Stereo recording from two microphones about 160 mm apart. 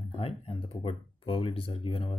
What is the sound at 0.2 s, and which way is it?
Speech, 35° left (ahead or behind).